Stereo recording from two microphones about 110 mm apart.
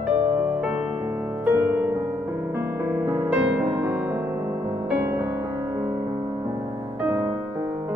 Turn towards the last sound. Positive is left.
turn(degrees=-25)  # may be behind; listen again after turning